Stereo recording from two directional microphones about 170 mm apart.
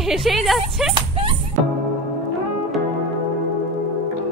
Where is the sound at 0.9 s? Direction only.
30° right (ahead or behind).